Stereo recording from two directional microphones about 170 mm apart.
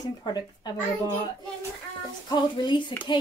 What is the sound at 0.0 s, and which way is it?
Speech, 25° left (ahead or behind).